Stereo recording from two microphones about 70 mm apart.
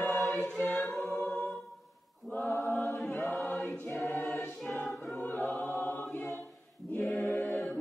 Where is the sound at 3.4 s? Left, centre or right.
Centre.